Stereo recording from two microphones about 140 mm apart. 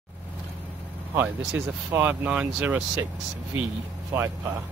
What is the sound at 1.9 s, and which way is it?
Speech, 10° right (ahead or behind).